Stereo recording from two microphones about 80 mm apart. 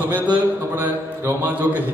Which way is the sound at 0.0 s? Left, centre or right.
Right.